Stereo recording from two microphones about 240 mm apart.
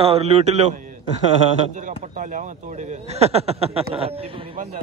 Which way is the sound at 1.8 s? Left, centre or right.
Right.